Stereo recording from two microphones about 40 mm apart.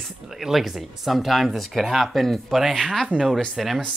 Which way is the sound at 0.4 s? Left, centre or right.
Centre.